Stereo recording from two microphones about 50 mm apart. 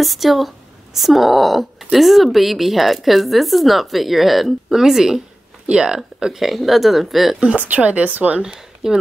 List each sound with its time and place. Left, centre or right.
0.0 s a woman's voice: centre
7.3 s speech: right
8.5 s speech: centre